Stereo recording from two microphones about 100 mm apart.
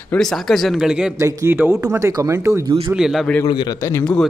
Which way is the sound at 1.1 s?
25° right (ahead or behind).